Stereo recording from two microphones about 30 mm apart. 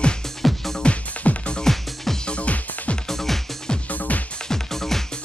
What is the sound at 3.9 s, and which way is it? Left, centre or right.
Music, left.